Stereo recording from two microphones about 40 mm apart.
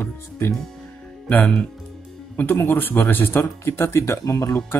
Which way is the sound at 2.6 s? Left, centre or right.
Left.